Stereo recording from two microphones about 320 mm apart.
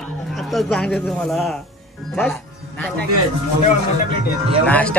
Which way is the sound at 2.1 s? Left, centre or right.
Centre.